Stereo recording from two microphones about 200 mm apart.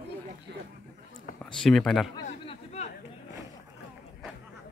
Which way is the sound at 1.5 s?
Centre (ahead or behind).